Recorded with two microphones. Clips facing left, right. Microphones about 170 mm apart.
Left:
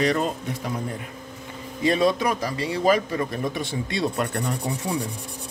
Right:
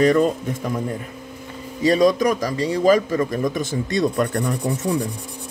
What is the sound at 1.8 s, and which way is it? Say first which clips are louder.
A man's voice: right 5 dB; 40° right (ahead or behind).